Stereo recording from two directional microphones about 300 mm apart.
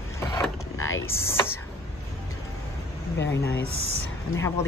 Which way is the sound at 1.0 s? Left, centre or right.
Centre.